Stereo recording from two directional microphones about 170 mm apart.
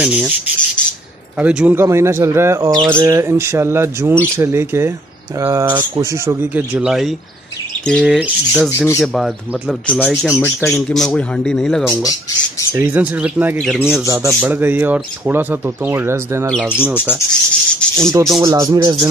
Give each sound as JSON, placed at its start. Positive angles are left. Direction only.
{"t": 0.0, "sound": "a man's voice", "side_deg": -5}
{"t": 1.4, "sound": "a man's voice", "side_deg": -5}
{"t": 10.3, "sound": "speech", "side_deg": 15}
{"t": 10.7, "sound": "a man's voice", "side_deg": 5}
{"t": 11.8, "sound": "speech", "side_deg": 20}
{"t": 12.7, "sound": "a man's voice", "side_deg": -10}
{"t": 14.0, "sound": "speech", "side_deg": -20}
{"t": 17.3, "sound": "a man's voice", "side_deg": 5}
{"t": 18.4, "sound": "speech", "side_deg": -20}